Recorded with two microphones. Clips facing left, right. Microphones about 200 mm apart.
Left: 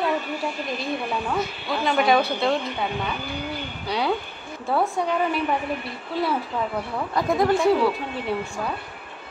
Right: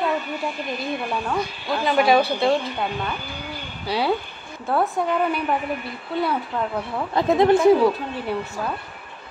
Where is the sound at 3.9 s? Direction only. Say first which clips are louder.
Right 2 dB; 5° right (ahead or behind).